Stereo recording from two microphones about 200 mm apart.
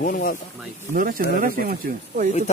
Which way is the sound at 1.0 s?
45° right (ahead or behind).